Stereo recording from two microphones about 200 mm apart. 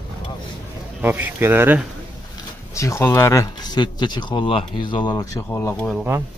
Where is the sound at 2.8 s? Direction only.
15° left (ahead or behind).